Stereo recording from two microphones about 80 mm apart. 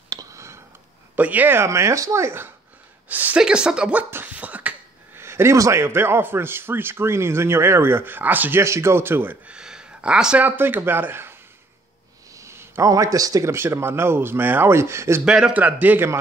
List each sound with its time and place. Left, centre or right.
0.1 s a sound: right
1.1 s a man's voice: right
1.7 s a woman's voice: right
3.3 s speech: centre
4.1 s a sound: right
5.2 s a man's voice: right
9.5 s a sound: centre
10.4 s a man's voice: right
12.4 s a sound: right
12.8 s a man's voice: right
13.5 s speech: right
15.2 s speech: centre
15.6 s a man's voice: right